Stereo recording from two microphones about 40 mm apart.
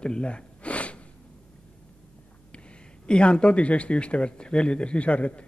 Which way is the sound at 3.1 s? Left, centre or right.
Left.